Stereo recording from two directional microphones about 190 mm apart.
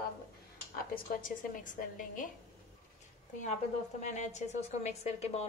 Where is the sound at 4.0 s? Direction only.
35° left (ahead or behind).